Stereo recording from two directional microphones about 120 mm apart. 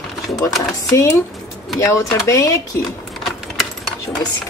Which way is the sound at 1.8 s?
25° left (ahead or behind).